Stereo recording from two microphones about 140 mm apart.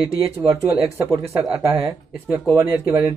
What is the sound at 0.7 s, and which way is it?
Speech, 15° right (ahead or behind).